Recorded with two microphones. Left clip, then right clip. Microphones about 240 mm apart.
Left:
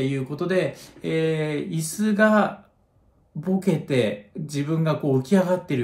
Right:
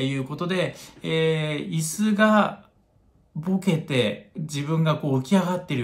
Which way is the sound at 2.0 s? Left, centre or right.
Centre.